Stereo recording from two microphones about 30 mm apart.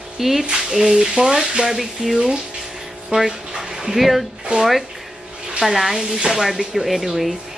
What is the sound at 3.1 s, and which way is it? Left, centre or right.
Speech, right.